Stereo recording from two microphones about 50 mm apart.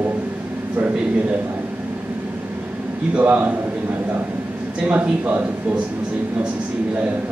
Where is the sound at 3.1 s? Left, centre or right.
Right.